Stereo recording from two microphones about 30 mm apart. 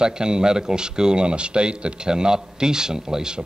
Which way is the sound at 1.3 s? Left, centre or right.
Right.